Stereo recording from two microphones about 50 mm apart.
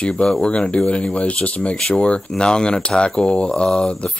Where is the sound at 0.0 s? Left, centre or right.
Centre.